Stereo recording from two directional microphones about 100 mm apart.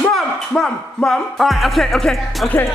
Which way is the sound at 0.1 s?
5° left (ahead or behind).